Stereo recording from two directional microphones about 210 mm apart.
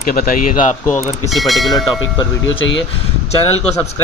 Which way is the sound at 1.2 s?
Centre (ahead or behind).